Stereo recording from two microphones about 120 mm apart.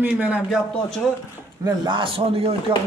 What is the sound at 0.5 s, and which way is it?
Speech, 5° left (ahead or behind).